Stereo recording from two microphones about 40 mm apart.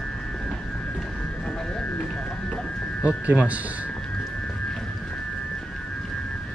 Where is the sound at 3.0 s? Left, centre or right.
Right.